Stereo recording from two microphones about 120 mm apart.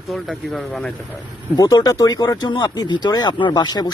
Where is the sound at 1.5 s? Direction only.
30° left (ahead or behind).